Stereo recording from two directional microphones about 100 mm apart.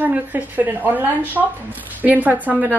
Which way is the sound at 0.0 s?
20° right (ahead or behind).